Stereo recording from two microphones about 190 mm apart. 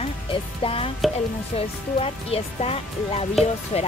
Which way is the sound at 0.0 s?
30° left (ahead or behind).